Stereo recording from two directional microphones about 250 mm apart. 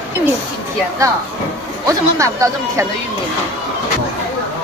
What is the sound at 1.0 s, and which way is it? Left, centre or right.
A woman's voice, centre.